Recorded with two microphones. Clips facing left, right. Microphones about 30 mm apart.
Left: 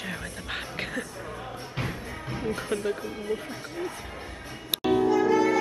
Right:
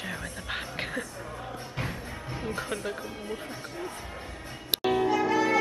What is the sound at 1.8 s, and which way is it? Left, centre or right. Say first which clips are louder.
Music: left 2 dB; centre.